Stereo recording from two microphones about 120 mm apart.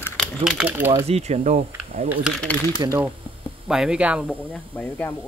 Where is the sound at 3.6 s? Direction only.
5° right (ahead or behind).